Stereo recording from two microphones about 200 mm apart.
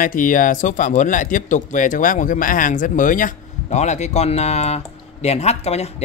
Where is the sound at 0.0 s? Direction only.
40° left (ahead or behind).